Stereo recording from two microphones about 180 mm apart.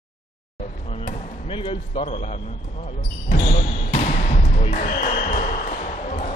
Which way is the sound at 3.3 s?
40° left (ahead or behind).